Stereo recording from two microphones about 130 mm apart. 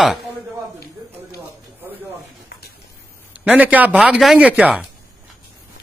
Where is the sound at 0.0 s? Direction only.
Centre (ahead or behind).